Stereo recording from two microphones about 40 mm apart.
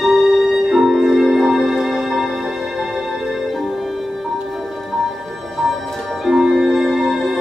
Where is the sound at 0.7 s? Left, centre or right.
Centre.